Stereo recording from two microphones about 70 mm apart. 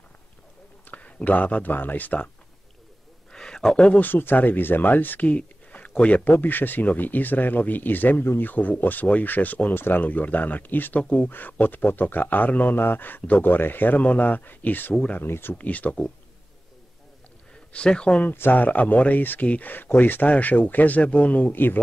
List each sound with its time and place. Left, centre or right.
0.8 s speech: left
3.3 s a sound: centre
4.0 s speech: left
15.5 s speech: left
17.7 s speech: centre
18.2 s speech: left